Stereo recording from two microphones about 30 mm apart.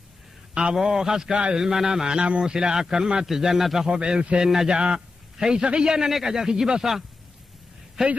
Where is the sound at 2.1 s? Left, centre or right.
Right.